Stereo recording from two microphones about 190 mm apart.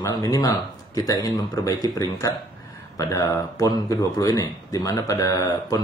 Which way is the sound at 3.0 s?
20° left (ahead or behind).